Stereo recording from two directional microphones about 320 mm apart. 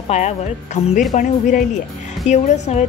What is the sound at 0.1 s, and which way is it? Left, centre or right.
Speech, left.